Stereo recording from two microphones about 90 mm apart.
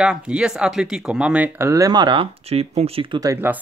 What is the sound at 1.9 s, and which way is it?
Speech, 60° right (ahead or behind).